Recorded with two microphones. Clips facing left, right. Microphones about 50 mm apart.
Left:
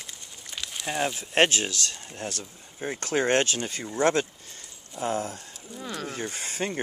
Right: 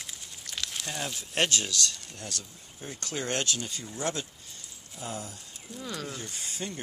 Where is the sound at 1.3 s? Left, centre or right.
Left.